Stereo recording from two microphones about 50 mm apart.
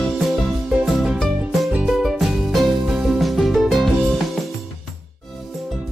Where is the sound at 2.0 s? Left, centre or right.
Centre.